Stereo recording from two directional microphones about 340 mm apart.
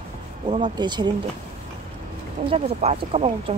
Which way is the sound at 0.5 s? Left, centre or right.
Centre.